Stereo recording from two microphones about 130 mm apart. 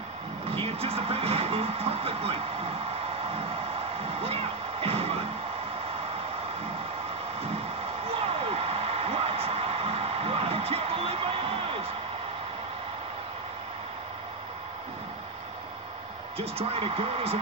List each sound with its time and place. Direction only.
0.5 s vehicle: 50° right (ahead or behind)
3.3 s music: 50° right (ahead or behind)
8.1 s a sound: 45° right (ahead or behind)
16.3 s speech: 50° right (ahead or behind)